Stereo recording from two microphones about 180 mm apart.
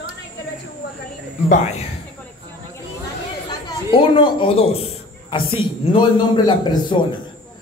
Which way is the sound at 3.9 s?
30° left (ahead or behind).